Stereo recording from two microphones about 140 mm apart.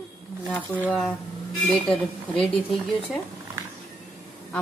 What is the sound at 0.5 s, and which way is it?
Speech, 10° left (ahead or behind).